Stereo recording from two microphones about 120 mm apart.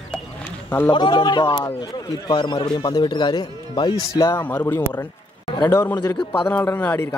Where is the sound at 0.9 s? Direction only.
40° left (ahead or behind).